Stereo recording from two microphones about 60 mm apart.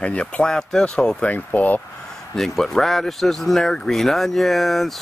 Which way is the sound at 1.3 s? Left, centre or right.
Left.